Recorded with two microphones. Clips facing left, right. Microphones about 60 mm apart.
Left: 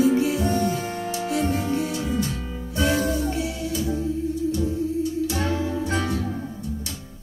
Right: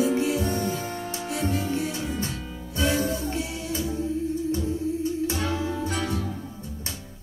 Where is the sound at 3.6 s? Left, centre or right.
Right.